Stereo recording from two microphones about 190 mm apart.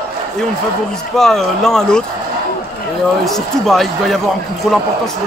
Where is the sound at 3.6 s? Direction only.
Centre (ahead or behind).